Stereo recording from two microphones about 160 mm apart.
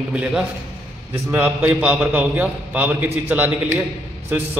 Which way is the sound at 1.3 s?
15° right (ahead or behind).